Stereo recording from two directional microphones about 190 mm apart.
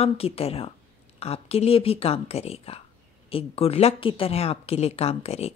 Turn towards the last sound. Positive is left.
turn(degrees=35)  # may be behind; listen again after turning